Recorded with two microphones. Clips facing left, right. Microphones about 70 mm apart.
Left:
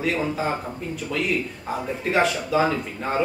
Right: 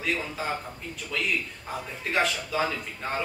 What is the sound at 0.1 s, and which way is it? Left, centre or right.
Speech, centre.